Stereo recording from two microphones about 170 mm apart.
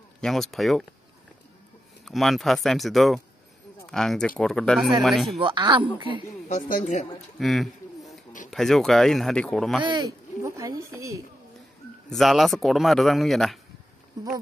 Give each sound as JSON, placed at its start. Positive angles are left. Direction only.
{"t": 0.2, "sound": "speech", "side_deg": 0}
{"t": 2.0, "sound": "speech", "side_deg": 0}
{"t": 5.4, "sound": "speech", "side_deg": -30}
{"t": 6.5, "sound": "speech", "side_deg": 45}
{"t": 7.3, "sound": "speech", "side_deg": 0}
{"t": 9.8, "sound": "speech", "side_deg": -25}
{"t": 12.1, "sound": "speech", "side_deg": 0}
{"t": 14.2, "sound": "speech", "side_deg": -20}